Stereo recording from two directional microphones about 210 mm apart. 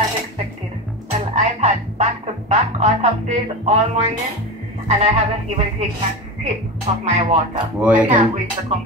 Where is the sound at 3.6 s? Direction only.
30° right (ahead or behind).